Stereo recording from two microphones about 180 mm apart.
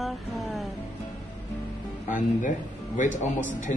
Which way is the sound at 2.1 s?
45° left (ahead or behind).